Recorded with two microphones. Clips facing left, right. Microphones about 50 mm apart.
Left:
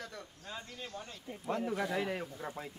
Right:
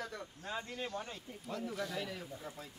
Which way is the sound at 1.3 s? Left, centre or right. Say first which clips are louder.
Left 10 dB; left.